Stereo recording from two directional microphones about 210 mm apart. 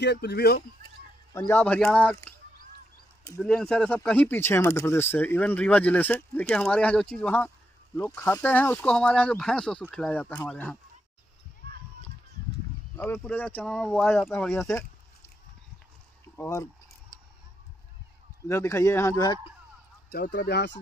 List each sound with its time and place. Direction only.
0.0 s speech: 50° left (ahead or behind)
0.6 s speech: 20° left (ahead or behind)
3.3 s speech: 5° left (ahead or behind)
12.9 s speech: 10° left (ahead or behind)
16.3 s speech: 15° left (ahead or behind)
18.5 s speech: 10° left (ahead or behind)
20.1 s speech: 50° left (ahead or behind)